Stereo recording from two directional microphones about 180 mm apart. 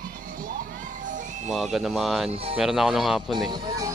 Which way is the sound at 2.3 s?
35° right (ahead or behind).